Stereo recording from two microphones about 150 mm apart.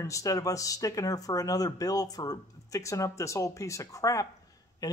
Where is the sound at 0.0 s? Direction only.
20° left (ahead or behind).